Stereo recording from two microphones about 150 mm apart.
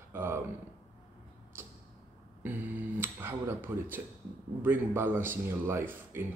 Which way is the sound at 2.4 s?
10° right (ahead or behind).